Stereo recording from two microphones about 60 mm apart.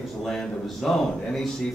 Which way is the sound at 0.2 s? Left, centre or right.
Centre.